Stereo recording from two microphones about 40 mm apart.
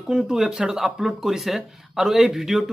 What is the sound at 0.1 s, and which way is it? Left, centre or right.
Speech, centre.